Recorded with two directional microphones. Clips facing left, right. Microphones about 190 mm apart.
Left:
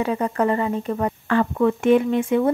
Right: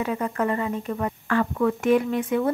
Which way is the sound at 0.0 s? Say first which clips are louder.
Left 4 dB; 30° left (ahead or behind).